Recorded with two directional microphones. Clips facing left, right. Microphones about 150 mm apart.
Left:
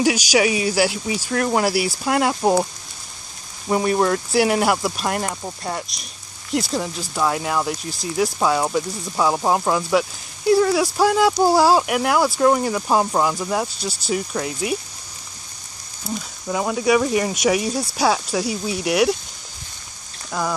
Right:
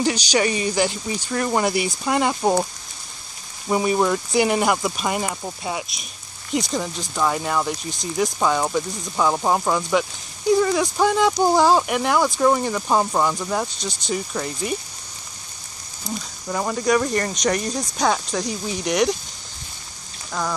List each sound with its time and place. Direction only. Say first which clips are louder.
0.0 s speech: left 3 dB; 10° left (ahead or behind)
16.2 s speech: left 2 dB; 5° left (ahead or behind)